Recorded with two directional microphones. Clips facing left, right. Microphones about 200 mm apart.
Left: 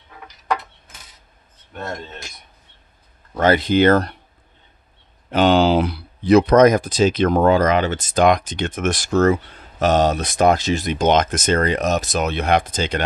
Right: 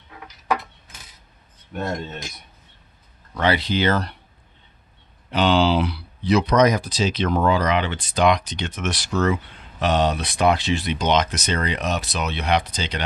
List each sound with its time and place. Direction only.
1.7 s speech: 15° right (ahead or behind)
3.3 s speech: 45° left (ahead or behind)
5.3 s speech: 45° left (ahead or behind)